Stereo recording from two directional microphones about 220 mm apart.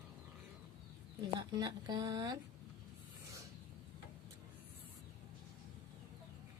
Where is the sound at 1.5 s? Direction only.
15° right (ahead or behind).